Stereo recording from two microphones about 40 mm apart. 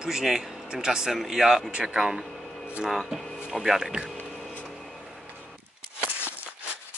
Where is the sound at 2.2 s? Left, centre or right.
Centre.